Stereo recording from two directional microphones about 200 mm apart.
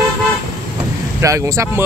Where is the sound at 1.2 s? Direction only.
15° right (ahead or behind).